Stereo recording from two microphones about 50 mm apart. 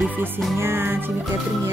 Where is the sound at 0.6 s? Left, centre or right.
Right.